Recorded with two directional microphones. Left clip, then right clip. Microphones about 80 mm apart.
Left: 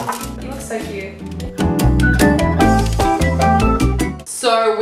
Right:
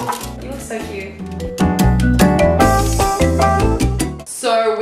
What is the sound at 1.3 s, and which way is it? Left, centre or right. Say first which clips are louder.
Music: right 2 dB; centre.